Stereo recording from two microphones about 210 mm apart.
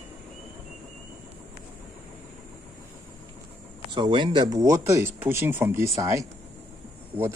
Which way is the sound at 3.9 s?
25° right (ahead or behind).